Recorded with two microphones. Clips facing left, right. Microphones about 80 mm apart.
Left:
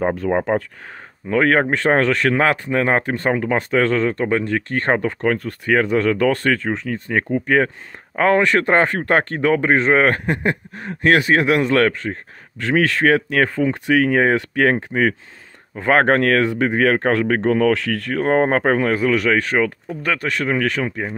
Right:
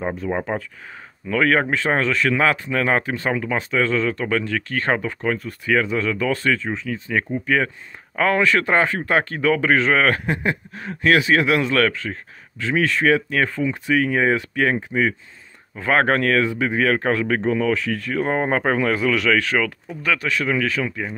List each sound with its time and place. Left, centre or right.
0.2 s speech: left
1.3 s speech: left
12.5 s speech: left
15.9 s speech: left
18.1 s speech: left
20.0 s speech: left